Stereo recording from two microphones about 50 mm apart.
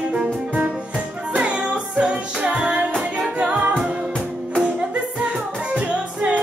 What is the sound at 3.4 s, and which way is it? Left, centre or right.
A capella, right.